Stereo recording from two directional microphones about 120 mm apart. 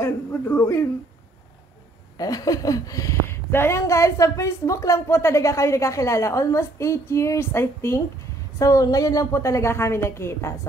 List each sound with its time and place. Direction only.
0.0 s a man's voice: 20° left (ahead or behind)
2.1 s a woman's voice: 30° left (ahead or behind)